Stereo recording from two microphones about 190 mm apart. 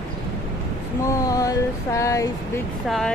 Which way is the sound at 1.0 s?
15° left (ahead or behind).